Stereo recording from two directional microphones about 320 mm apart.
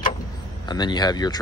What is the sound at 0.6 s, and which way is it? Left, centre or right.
Speech, centre.